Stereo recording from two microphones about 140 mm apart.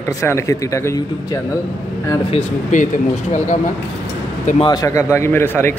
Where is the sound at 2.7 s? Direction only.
65° left (ahead or behind).